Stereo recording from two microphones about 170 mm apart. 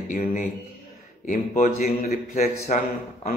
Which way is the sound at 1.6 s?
50° left (ahead or behind).